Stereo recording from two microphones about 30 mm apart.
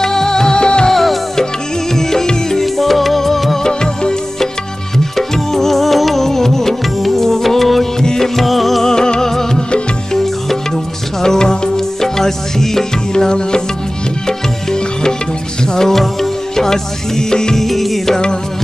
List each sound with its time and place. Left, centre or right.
0.0 s music: centre
0.9 s music: centre
2.6 s music: centre
3.6 s music: left
4.9 s music: centre
8.8 s music: left
11.1 s music: centre
15.9 s music: centre
17.6 s music: centre